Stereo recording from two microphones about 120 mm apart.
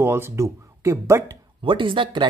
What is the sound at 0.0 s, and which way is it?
Speech, 20° right (ahead or behind).